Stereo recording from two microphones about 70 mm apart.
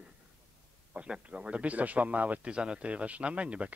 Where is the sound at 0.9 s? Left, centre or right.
Centre.